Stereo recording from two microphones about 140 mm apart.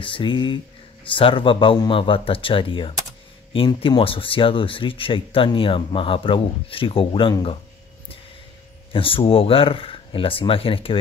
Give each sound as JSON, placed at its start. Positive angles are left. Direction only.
{"t": 0.0, "sound": "speech", "side_deg": 35}
{"t": 8.9, "sound": "speech", "side_deg": 40}